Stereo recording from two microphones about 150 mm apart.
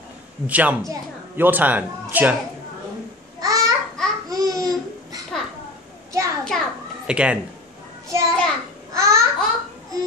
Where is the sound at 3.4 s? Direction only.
25° right (ahead or behind).